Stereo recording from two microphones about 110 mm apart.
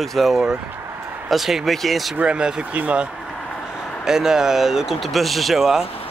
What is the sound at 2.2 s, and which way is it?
Speech, 10° right (ahead or behind).